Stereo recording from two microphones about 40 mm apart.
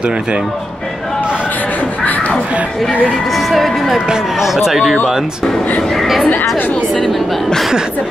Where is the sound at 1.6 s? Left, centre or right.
Left.